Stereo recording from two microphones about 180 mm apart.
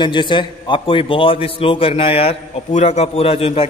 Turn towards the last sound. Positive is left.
turn(degrees=35)  # may be behind; listen again after turning